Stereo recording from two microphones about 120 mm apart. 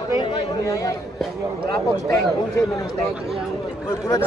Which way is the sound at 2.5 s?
25° left (ahead or behind).